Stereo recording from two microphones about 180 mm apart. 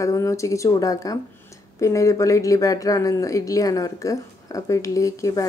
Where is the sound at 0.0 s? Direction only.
15° left (ahead or behind).